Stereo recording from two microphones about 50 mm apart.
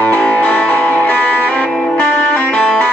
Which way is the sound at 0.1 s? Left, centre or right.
Left.